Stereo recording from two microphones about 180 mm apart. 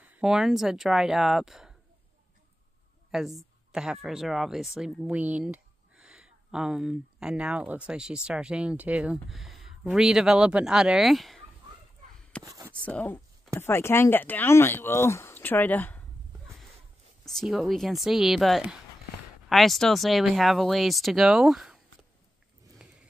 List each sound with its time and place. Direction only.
0.0 s speech: 5° right (ahead or behind)
3.1 s a woman's voice: centre (ahead or behind)
12.4 s speech: 20° right (ahead or behind)
12.7 s speech: 5° left (ahead or behind)
17.2 s speech: centre (ahead or behind)
22.8 s a sound: 5° right (ahead or behind)